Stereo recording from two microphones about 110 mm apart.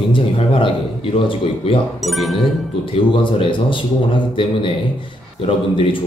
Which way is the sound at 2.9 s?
55° left (ahead or behind).